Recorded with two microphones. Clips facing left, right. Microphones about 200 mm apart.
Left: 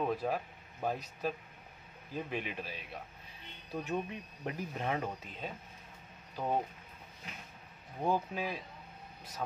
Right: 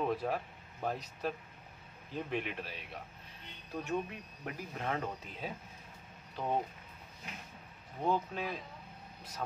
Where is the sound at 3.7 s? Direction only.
20° left (ahead or behind).